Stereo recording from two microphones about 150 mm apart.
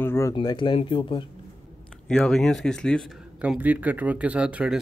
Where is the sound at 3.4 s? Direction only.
10° right (ahead or behind).